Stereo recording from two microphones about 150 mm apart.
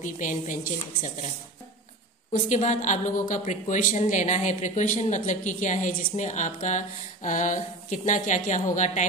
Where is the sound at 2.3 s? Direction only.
55° left (ahead or behind).